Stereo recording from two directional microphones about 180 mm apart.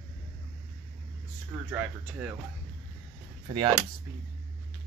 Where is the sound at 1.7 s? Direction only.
10° right (ahead or behind).